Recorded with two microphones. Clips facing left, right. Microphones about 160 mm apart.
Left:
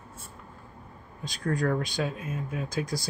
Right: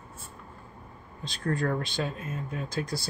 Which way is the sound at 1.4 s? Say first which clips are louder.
Left 1 dB; centre (ahead or behind).